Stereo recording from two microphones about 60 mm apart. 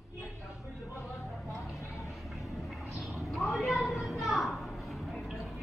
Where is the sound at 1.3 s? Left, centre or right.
Centre.